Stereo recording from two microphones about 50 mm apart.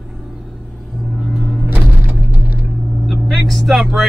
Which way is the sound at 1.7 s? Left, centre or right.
Right.